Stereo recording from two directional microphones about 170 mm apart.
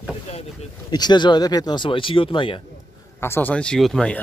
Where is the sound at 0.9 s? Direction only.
25° left (ahead or behind).